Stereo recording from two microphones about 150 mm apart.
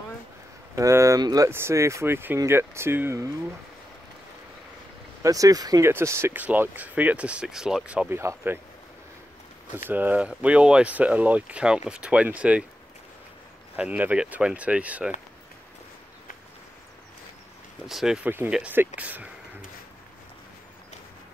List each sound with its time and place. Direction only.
0.7 s speech: 20° right (ahead or behind)
5.2 s speech: 25° right (ahead or behind)
9.8 s speech: 10° right (ahead or behind)
13.7 s speech: 10° right (ahead or behind)
17.8 s speech: 5° right (ahead or behind)